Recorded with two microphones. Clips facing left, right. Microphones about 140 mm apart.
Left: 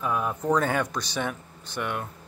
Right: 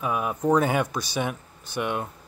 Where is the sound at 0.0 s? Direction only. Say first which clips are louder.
Right 2 dB; 10° right (ahead or behind).